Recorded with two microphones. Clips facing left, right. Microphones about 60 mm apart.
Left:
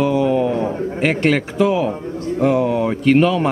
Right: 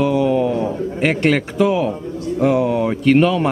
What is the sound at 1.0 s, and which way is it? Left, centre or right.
Speech, centre.